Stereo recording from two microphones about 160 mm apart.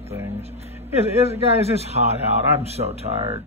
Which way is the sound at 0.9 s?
40° right (ahead or behind).